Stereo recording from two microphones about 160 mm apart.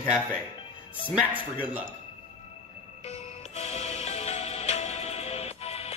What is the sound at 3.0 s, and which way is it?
Music, 40° left (ahead or behind).